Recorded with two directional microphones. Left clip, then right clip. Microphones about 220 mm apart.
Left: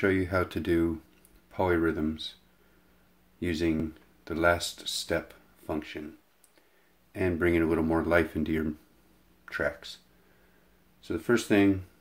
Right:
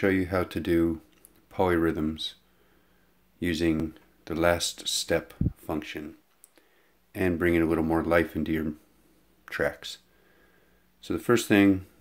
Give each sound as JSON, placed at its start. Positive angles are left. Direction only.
{"t": 0.0, "sound": "speech", "side_deg": -15}
{"t": 3.3, "sound": "speech", "side_deg": -20}
{"t": 11.0, "sound": "speech", "side_deg": -30}